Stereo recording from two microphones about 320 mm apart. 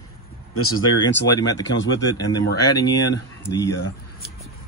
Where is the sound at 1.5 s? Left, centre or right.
Centre.